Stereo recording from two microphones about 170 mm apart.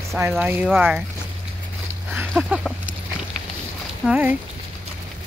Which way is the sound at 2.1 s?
10° right (ahead or behind).